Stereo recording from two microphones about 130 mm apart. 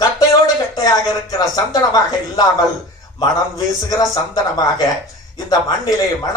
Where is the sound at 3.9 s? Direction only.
30° left (ahead or behind).